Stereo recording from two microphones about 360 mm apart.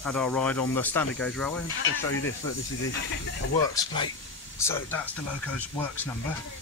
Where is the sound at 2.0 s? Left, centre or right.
Left.